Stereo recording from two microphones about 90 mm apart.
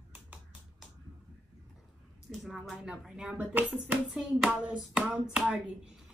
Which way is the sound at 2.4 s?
5° right (ahead or behind).